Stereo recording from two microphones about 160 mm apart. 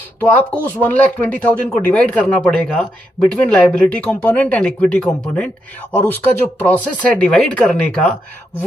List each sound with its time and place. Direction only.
0.2 s speech: 10° left (ahead or behind)